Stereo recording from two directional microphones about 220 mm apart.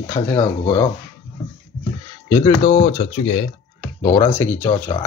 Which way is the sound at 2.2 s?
25° left (ahead or behind).